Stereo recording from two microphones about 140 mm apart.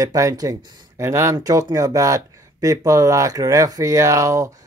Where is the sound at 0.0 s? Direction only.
25° right (ahead or behind).